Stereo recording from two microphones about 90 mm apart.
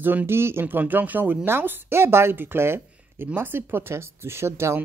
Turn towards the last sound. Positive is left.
turn(degrees=-30)  # may be behind; listen again after turning